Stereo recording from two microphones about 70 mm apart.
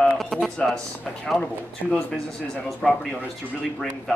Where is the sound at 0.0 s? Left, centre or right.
Centre.